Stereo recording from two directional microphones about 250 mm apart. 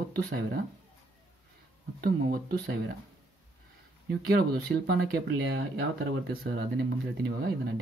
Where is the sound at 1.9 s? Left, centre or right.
Right.